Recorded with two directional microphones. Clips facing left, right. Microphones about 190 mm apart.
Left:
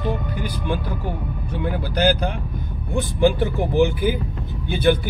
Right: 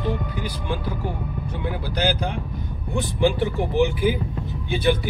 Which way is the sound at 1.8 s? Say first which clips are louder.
Left 4 dB; 50° left (ahead or behind).